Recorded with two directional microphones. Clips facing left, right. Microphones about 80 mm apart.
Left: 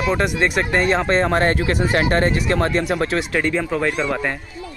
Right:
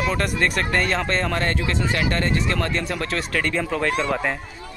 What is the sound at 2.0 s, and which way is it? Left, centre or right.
Speech, left.